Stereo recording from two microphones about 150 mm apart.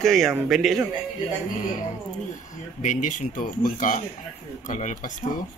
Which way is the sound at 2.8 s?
55° left (ahead or behind).